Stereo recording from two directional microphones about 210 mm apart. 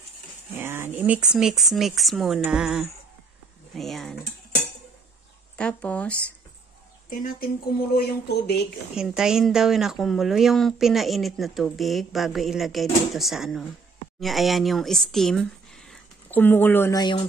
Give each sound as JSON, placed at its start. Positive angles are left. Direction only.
{"t": 0.6, "sound": "speech", "side_deg": -10}
{"t": 5.6, "sound": "speech", "side_deg": 5}
{"t": 7.1, "sound": "speech", "side_deg": 45}
{"t": 8.9, "sound": "speech", "side_deg": -5}